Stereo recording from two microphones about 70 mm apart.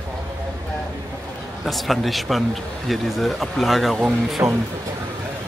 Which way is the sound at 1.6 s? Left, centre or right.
Centre.